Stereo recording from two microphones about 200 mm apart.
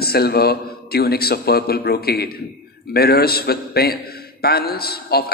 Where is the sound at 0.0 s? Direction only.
50° left (ahead or behind).